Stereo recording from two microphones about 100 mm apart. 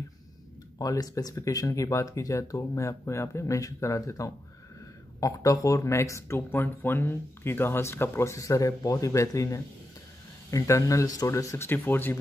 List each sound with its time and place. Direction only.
0.7 s speech: 40° left (ahead or behind); by 12.2 s 20° left (ahead or behind)